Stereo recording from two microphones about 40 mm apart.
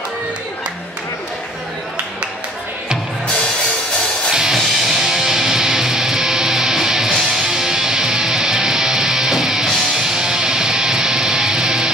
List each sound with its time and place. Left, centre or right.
4.3 s music: centre